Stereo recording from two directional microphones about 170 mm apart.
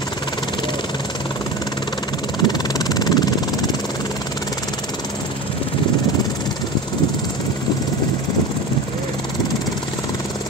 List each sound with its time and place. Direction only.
2.4 s vehicle: 25° left (ahead or behind)